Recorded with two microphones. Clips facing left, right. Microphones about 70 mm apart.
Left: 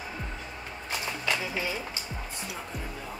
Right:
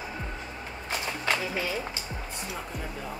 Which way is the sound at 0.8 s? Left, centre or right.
Right.